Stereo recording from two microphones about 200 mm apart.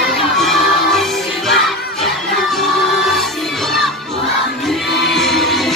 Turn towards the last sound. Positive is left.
turn(degrees=0)  # may be behind; listen again after turning